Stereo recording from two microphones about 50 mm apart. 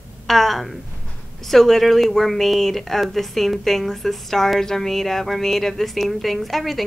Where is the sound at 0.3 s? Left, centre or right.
Centre.